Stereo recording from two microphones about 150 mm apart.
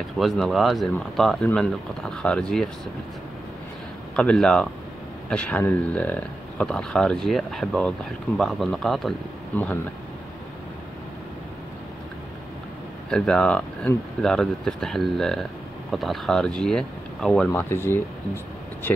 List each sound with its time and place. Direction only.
0.2 s speech: centre (ahead or behind)
4.1 s speech: 5° left (ahead or behind)
9.5 s speech: 10° left (ahead or behind)
13.1 s speech: 5° left (ahead or behind)
17.5 s speech: 15° left (ahead or behind)